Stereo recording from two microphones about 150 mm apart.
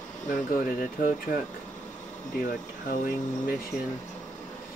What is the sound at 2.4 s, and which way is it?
Speech, 65° left (ahead or behind).